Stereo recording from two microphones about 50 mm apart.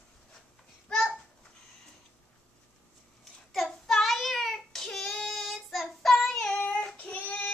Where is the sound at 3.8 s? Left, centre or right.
Centre.